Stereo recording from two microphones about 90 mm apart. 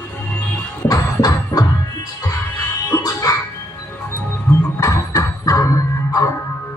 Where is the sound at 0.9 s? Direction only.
45° left (ahead or behind).